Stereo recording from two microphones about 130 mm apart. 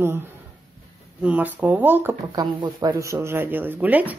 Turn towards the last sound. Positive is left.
turn(degrees=-15)  # may be behind; listen again after turning